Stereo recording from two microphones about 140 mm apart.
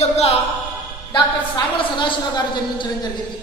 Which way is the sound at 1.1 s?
35° left (ahead or behind).